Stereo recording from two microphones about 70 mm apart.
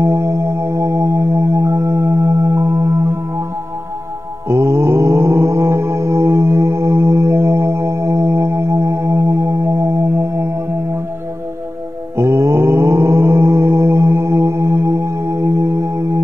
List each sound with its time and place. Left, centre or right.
0.0 s music: right
4.5 s mantra: right
12.2 s mantra: right